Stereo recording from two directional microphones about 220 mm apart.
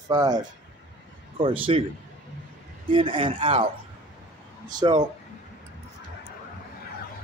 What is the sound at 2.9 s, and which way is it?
Speech, 25° right (ahead or behind).